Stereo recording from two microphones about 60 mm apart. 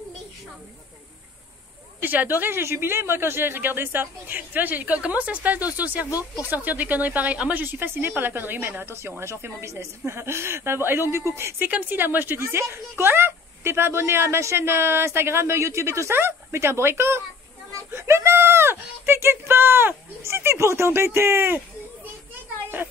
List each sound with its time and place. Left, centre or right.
2.0 s speech: right
7.6 s speech: right
11.7 s speech: right
12.4 s speech: right